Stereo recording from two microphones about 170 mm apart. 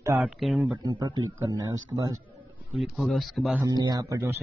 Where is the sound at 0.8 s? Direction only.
20° right (ahead or behind).